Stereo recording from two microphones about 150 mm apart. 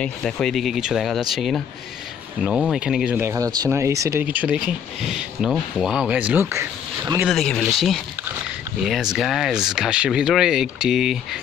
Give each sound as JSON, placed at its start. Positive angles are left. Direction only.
{"t": 0.0, "sound": "speech", "side_deg": 5}
{"t": 3.2, "sound": "speech", "side_deg": -20}
{"t": 7.2, "sound": "speech", "side_deg": 5}